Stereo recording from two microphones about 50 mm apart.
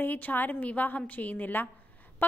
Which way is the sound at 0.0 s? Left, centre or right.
Left.